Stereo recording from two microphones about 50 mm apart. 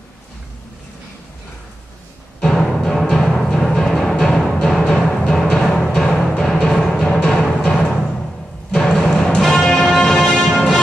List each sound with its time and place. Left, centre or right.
2.4 s timpani: centre
6.7 s music: centre
8.7 s music: centre